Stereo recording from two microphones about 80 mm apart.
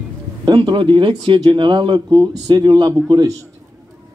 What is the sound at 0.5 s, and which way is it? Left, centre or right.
Speech, right.